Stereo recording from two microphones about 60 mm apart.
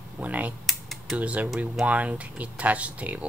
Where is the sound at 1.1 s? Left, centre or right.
Right.